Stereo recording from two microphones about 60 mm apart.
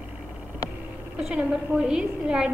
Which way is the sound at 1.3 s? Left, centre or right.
Centre.